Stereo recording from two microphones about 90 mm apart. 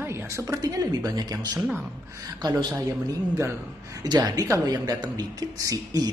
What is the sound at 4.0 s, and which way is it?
Speech, 50° right (ahead or behind).